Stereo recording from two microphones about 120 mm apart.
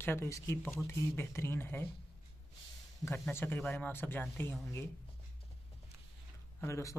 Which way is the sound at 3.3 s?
20° left (ahead or behind).